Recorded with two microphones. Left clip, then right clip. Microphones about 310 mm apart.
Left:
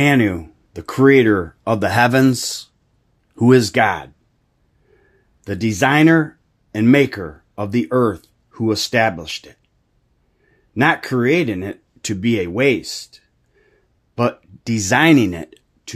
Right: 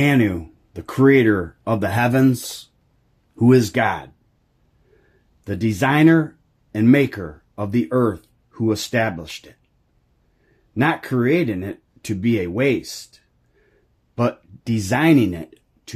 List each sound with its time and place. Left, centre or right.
0.0 s speech: centre
5.4 s speech: centre
10.7 s speech: centre